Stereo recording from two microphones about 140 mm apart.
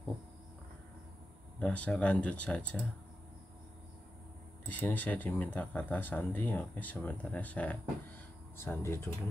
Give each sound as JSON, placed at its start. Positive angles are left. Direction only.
{"t": 1.6, "sound": "speech", "side_deg": 10}
{"t": 4.6, "sound": "speech", "side_deg": 10}